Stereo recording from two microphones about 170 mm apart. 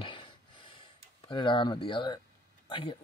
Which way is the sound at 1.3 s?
30° left (ahead or behind).